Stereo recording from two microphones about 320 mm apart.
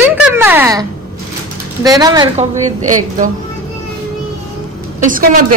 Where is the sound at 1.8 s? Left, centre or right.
Centre.